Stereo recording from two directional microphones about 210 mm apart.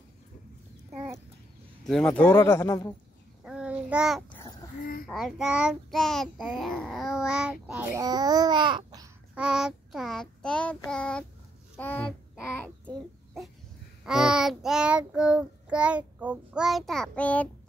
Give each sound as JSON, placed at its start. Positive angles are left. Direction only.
{"t": 1.9, "sound": "speech", "side_deg": 5}
{"t": 3.4, "sound": "child singing", "side_deg": -5}
{"t": 4.3, "sound": "babbling", "side_deg": 20}
{"t": 5.0, "sound": "child singing", "side_deg": 0}
{"t": 9.3, "sound": "child singing", "side_deg": -5}
{"t": 12.8, "sound": "a sound", "side_deg": 0}
{"t": 14.0, "sound": "child singing", "side_deg": -5}